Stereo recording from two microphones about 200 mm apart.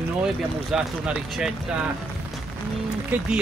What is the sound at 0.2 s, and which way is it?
Speech, 5° right (ahead or behind).